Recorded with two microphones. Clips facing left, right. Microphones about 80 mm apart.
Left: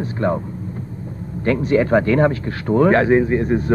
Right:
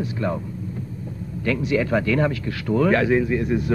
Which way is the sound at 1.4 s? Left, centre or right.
Left.